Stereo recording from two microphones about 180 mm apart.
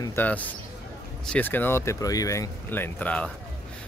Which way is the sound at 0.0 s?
10° left (ahead or behind).